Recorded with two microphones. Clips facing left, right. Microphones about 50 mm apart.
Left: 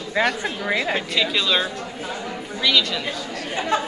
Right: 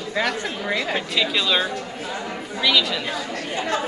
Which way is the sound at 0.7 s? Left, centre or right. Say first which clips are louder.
Left 2 dB; centre.